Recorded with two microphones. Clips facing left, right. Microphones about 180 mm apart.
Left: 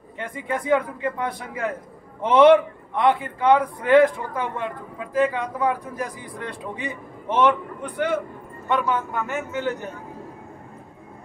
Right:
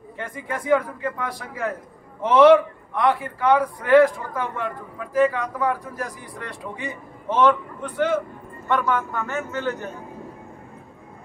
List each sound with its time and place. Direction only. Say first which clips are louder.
0.5 s a man's voice: even; 20° left (ahead or behind)
7.3 s a man's voice: right 1 dB; 15° left (ahead or behind)